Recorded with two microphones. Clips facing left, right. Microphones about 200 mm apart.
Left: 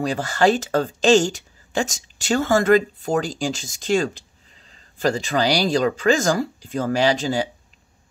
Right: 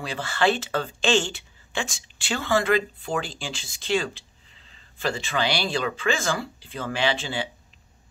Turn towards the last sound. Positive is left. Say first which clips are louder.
# left 7 dB
turn(degrees=40)  # may be behind; listen again after turning